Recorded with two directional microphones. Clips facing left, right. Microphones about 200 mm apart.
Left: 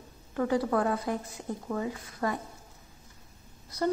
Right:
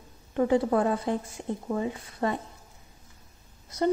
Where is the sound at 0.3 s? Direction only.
25° right (ahead or behind).